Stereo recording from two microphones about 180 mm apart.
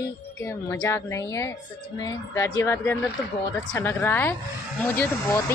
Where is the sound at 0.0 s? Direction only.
15° left (ahead or behind).